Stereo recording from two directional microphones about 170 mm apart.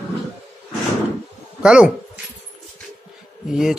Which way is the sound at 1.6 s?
5° right (ahead or behind).